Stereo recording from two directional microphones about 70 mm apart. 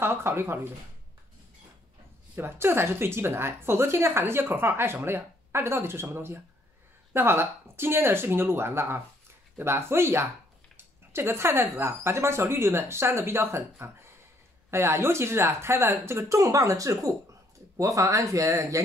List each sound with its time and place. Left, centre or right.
0.0 s speech: right
2.3 s speech: right
10.8 s a sound: right
11.8 s speech: right
16.3 s speech: right